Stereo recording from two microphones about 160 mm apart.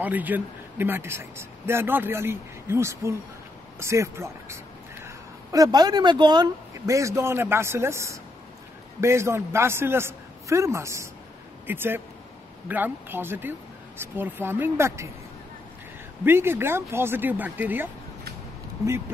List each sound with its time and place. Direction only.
0.0 s speech: 10° right (ahead or behind)
16.3 s speech: 15° right (ahead or behind)